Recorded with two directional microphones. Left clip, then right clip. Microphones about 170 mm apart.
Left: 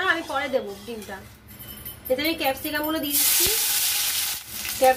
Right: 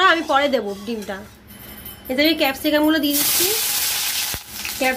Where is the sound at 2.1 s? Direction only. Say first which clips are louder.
Right 9 dB; 75° right (ahead or behind).